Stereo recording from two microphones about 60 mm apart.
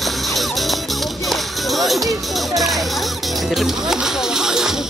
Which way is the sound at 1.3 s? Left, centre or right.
Centre.